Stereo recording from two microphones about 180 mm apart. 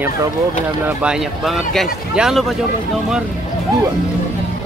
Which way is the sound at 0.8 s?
5° right (ahead or behind).